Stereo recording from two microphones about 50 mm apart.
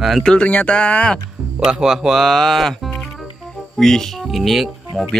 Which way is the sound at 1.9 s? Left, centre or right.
Centre.